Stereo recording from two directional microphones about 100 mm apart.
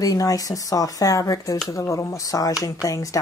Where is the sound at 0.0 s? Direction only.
35° left (ahead or behind).